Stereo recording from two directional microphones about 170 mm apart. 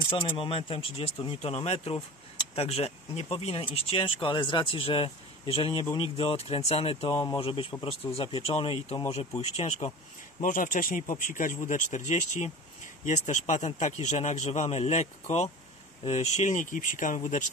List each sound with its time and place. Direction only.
0.1 s speech: 30° left (ahead or behind)
10.4 s speech: 50° left (ahead or behind)